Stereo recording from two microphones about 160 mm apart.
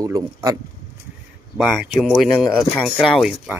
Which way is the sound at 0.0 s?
20° right (ahead or behind).